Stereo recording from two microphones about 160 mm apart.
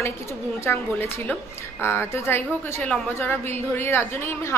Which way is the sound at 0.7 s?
15° left (ahead or behind).